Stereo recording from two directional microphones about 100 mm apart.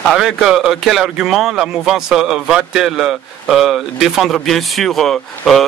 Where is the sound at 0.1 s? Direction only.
5° right (ahead or behind).